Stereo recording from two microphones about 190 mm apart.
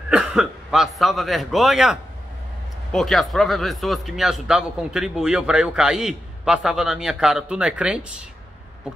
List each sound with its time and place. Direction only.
0.1 s a man's voice: 5° right (ahead or behind)